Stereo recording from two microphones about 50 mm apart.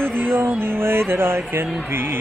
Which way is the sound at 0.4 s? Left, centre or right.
Right.